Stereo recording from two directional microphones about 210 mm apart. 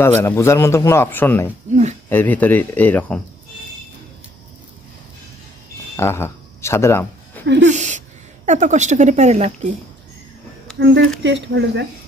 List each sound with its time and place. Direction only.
0.0 s a man's voice: 10° left (ahead or behind)
1.7 s speech: 35° right (ahead or behind)
2.0 s a man's voice: 10° left (ahead or behind)
5.9 s a sound: 10° left (ahead or behind)
7.4 s speech: 55° right (ahead or behind)
7.7 s speech: 35° right (ahead or behind)
10.8 s speech: 60° right (ahead or behind)